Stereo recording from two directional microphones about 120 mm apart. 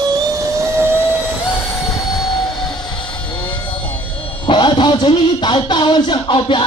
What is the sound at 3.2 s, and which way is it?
Vehicle, 45° left (ahead or behind).